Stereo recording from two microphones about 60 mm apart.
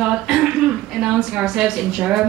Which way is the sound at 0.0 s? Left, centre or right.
Centre.